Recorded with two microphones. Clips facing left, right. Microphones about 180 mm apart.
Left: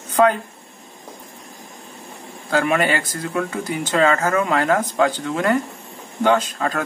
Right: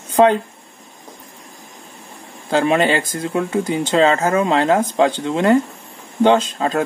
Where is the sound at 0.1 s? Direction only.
25° right (ahead or behind).